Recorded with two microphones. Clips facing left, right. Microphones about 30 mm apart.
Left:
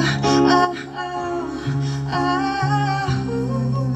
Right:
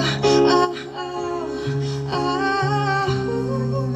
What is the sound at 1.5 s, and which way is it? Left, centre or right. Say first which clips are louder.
Music: even; centre.